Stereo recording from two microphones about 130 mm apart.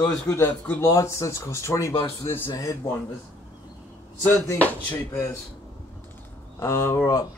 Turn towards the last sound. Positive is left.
turn(degrees=20)  # may be behind; listen again after turning